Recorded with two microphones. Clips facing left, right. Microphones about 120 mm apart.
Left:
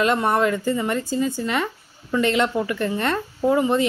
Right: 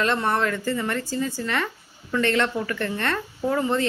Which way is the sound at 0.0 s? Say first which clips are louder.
Left 4 dB; 15° left (ahead or behind).